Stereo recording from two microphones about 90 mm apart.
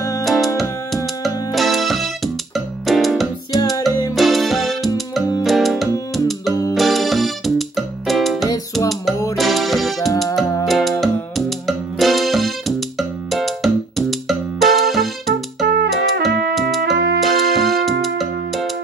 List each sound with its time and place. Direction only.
0.2 s music: centre (ahead or behind)
3.5 s music: 45° left (ahead or behind)
4.1 s music: centre (ahead or behind)